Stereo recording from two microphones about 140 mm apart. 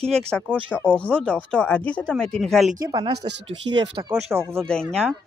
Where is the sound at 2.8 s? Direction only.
35° right (ahead or behind).